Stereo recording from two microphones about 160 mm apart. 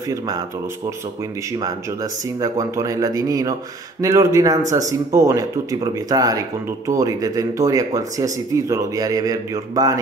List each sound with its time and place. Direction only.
0.1 s speech: 20° right (ahead or behind)
2.4 s speech: 20° right (ahead or behind)